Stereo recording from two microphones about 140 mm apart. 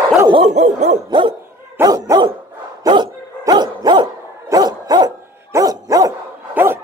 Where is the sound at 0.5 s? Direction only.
55° right (ahead or behind).